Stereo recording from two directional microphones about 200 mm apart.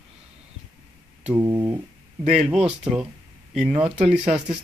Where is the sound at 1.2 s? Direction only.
10° right (ahead or behind).